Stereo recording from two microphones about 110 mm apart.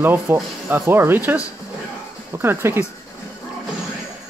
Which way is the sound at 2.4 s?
20° right (ahead or behind).